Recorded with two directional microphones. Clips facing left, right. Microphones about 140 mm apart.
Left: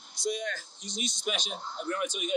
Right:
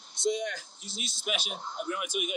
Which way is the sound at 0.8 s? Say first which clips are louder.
Left 5 dB; 5° right (ahead or behind).